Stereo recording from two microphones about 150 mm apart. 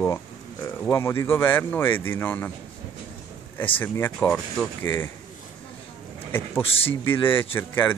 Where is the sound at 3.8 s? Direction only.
15° left (ahead or behind).